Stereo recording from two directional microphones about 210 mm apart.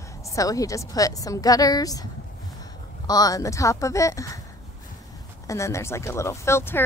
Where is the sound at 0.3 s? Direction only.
15° left (ahead or behind).